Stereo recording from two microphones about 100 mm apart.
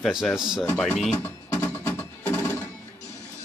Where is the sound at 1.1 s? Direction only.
25° left (ahead or behind).